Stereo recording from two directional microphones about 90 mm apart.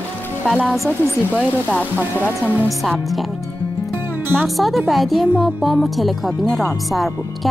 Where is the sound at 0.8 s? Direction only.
15° left (ahead or behind).